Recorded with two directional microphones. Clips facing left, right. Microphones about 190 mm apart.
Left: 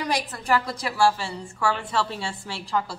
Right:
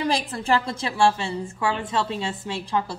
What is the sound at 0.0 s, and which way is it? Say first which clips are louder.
A woman's voice: right 3 dB; 25° right (ahead or behind).